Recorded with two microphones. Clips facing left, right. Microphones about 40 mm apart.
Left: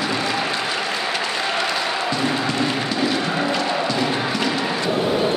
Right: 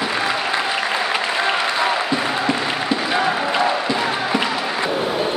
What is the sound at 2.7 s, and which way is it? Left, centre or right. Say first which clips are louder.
Music: right 2 dB; centre.